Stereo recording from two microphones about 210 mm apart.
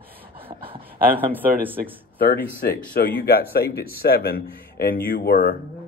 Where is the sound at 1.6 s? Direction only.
10° right (ahead or behind).